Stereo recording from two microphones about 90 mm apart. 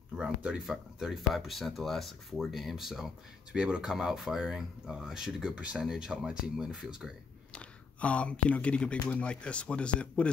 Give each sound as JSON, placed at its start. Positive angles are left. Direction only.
{"t": 0.1, "sound": "speech", "side_deg": -10}
{"t": 7.5, "sound": "speech", "side_deg": 15}